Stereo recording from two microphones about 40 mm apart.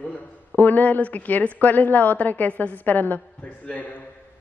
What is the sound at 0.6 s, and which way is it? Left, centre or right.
Speech, left.